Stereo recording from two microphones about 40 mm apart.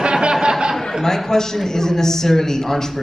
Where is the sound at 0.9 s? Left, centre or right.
Centre.